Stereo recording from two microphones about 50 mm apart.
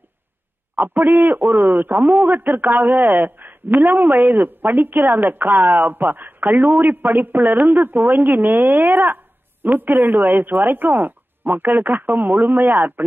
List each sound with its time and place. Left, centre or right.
0.7 s speech: right